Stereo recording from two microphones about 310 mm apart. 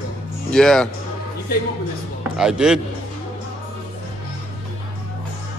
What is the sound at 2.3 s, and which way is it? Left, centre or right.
Speech, centre.